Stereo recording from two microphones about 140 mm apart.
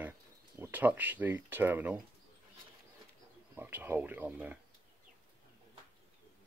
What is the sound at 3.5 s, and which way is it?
Speech, 15° right (ahead or behind).